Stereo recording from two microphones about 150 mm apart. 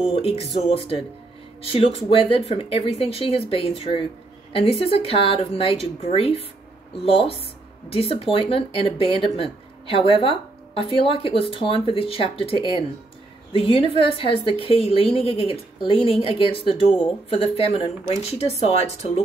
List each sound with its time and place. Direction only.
0.0 s a woman's voice: 40° left (ahead or behind)